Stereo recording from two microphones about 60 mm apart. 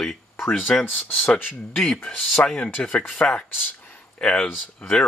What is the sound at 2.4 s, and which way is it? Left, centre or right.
Speech, centre.